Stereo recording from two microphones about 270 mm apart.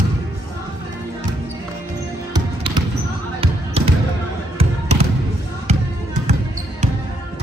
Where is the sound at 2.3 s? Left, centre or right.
Centre.